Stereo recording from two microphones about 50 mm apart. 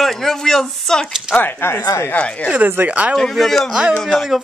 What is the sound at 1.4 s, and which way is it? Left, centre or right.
Speech, left.